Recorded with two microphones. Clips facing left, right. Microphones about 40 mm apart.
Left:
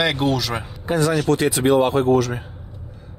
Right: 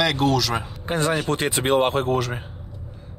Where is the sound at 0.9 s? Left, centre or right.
Right.